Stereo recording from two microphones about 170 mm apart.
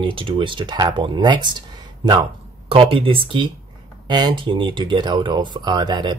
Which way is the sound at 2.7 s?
30° right (ahead or behind).